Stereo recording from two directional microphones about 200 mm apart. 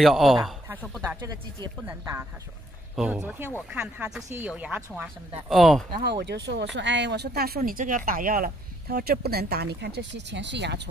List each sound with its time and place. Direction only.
0.0 s speech: centre (ahead or behind)
1.0 s speech: 15° right (ahead or behind)
3.0 s speech: 5° right (ahead or behind)
6.0 s speech: 55° right (ahead or behind)